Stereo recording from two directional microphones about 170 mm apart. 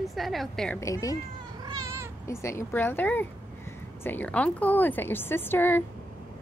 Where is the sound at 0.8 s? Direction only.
20° left (ahead or behind).